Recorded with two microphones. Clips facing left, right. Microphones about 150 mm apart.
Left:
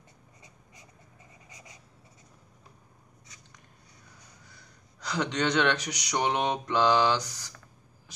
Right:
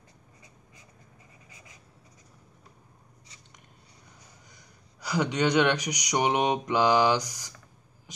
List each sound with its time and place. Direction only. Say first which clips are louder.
1.5 s writing: left 3 dB; 20° left (ahead or behind)
4.5 s speech: even; 15° right (ahead or behind)